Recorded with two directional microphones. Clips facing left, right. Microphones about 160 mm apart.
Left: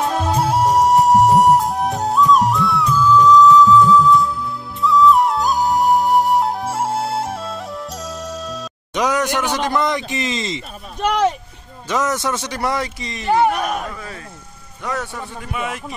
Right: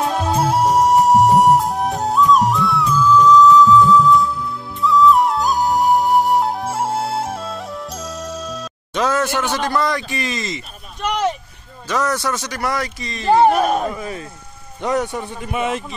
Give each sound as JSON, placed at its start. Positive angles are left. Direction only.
{"t": 0.1, "sound": "music", "side_deg": 0}
{"t": 8.9, "sound": "a sound", "side_deg": 15}
{"t": 9.4, "sound": "a man's voice", "side_deg": 15}
{"t": 11.9, "sound": "a man's voice", "side_deg": 20}
{"t": 13.3, "sound": "a man's voice", "side_deg": -30}
{"t": 13.9, "sound": "a man's voice", "side_deg": -20}